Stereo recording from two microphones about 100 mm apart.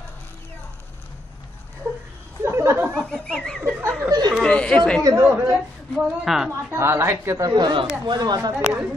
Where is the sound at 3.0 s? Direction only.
10° left (ahead or behind).